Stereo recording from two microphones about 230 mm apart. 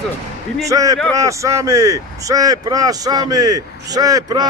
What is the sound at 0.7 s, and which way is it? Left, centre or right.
Speech, centre.